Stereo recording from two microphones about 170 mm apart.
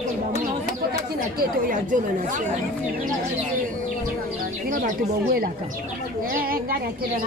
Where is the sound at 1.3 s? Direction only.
55° right (ahead or behind).